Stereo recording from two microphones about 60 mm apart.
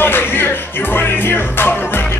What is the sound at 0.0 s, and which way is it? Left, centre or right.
Music, left.